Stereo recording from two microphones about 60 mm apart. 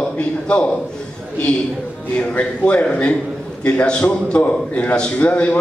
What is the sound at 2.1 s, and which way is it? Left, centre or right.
A man's voice, centre.